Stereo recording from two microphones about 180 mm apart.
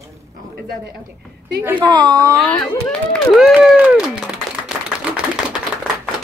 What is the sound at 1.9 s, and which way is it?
Speech, 25° right (ahead or behind).